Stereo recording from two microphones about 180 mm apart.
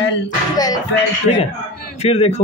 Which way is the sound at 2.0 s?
35° left (ahead or behind).